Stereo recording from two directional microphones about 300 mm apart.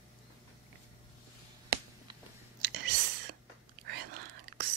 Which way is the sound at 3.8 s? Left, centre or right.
Right.